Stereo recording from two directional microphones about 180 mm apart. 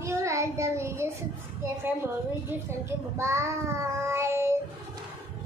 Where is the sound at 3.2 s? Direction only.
15° right (ahead or behind).